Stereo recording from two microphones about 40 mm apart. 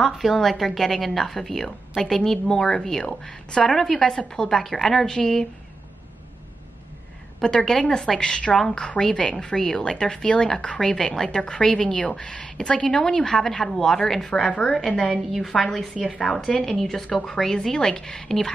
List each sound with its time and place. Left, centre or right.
0.0 s a woman's voice: centre
7.4 s a woman's voice: centre
9.1 s a woman's voice: left
14.3 s a woman's voice: left
14.6 s a woman's voice: centre
15.9 s a woman's voice: left
16.2 s a woman's voice: centre